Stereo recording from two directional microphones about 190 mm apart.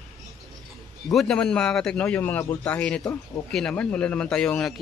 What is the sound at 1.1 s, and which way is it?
A man's voice, centre (ahead or behind).